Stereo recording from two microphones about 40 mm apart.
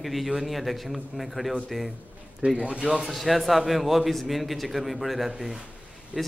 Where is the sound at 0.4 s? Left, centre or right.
Centre.